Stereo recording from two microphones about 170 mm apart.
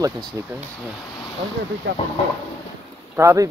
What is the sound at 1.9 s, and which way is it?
Speech, 85° right.